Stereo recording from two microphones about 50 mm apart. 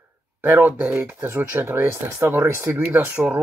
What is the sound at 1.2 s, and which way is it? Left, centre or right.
Speech, right.